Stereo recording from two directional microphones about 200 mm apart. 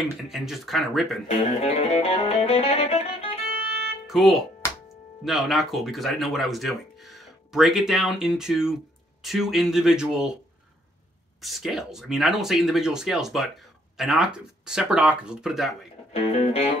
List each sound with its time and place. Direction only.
0.0 s speech: centre (ahead or behind)
1.3 s music: 30° left (ahead or behind)
4.1 s speech: centre (ahead or behind)
11.4 s speech: centre (ahead or behind)
16.1 s speech: 30° left (ahead or behind)